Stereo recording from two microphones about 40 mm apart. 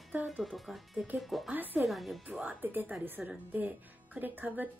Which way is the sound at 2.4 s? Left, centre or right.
Right.